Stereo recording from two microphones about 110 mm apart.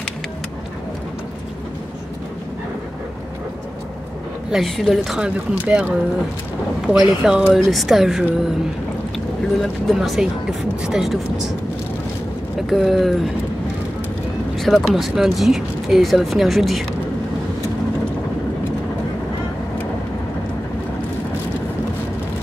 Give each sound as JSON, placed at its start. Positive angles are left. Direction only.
{"t": 4.5, "sound": "speech", "side_deg": 0}
{"t": 6.9, "sound": "speech", "side_deg": -10}
{"t": 12.5, "sound": "speech", "side_deg": 0}
{"t": 14.6, "sound": "speech", "side_deg": 0}